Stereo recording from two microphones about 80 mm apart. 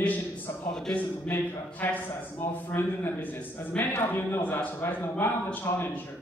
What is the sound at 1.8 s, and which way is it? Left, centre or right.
Speech, left.